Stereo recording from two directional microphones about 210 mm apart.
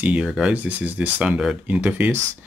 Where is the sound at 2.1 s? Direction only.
60° right (ahead or behind).